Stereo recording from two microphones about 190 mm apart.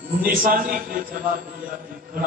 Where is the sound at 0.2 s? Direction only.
45° right (ahead or behind).